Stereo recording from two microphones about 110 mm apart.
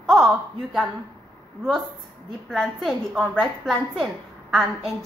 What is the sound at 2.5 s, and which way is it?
A woman's voice, centre (ahead or behind).